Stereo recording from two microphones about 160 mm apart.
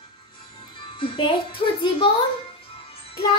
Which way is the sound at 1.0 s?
30° left (ahead or behind).